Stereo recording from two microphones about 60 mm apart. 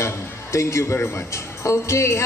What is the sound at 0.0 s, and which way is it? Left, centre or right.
A woman's voice, left.